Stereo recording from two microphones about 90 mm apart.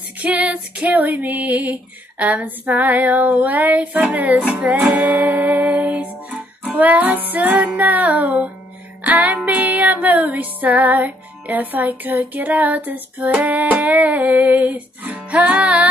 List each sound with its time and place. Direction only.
0.2 s female singing: 15° right (ahead or behind)
10.0 s music: 20° right (ahead or behind)